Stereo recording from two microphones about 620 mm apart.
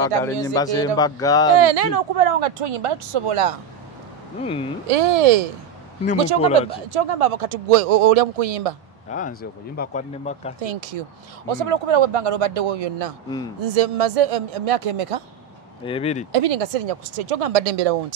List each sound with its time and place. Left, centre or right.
0.0 s speech: centre
1.6 s speech: right
4.4 s speech: centre
4.8 s speech: right
6.9 s speech: right
9.1 s speech: centre
10.6 s speech: right
15.8 s speech: centre
16.3 s speech: right